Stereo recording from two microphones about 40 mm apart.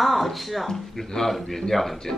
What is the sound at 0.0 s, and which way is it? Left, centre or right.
A woman's voice, centre.